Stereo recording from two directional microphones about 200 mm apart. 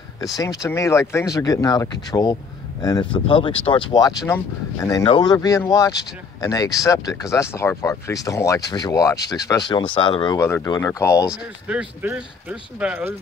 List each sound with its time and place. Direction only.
0.2 s speech: 15° left (ahead or behind)
11.6 s speech: 5° right (ahead or behind)